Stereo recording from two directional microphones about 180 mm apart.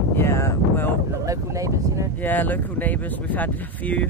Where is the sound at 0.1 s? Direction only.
15° left (ahead or behind).